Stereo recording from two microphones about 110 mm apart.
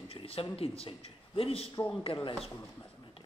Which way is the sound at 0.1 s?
60° left (ahead or behind).